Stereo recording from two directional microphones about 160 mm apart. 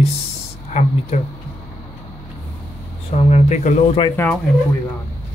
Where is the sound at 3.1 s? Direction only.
45° left (ahead or behind).